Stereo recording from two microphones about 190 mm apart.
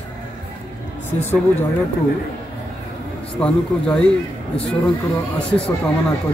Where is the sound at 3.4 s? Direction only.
5° left (ahead or behind).